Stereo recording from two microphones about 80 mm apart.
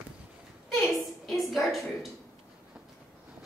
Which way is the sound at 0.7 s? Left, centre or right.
Centre.